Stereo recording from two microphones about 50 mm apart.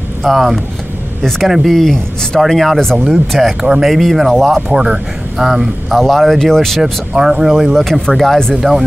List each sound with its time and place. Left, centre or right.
0.2 s speech: centre
1.7 s speech: centre
4.7 s speech: right
5.4 s speech: centre
5.9 s speech: centre
6.8 s speech: centre
7.7 s speech: centre
8.5 s speech: centre